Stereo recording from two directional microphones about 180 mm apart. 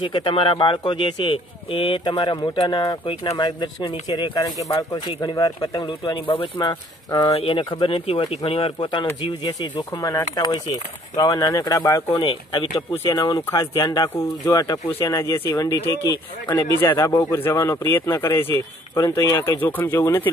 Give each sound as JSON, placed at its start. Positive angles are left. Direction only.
{"t": 0.0, "sound": "speech", "side_deg": 30}
{"t": 12.9, "sound": "speech", "side_deg": 15}